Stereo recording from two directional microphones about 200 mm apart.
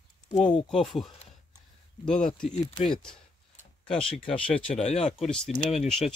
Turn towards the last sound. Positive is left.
turn(degrees=30)  # may be behind; listen again after turning